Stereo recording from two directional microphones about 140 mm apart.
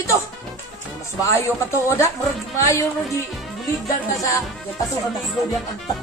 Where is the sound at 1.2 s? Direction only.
20° left (ahead or behind).